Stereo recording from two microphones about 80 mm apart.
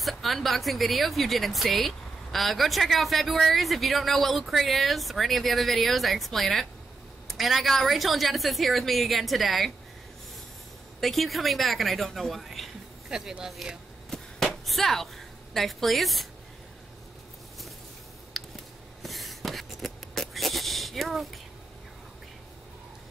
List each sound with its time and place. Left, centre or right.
0.0 s speech: centre
11.0 s speech: centre
18.3 s a sound: centre